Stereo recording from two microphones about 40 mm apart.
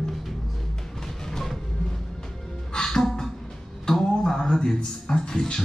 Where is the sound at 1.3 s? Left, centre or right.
Centre.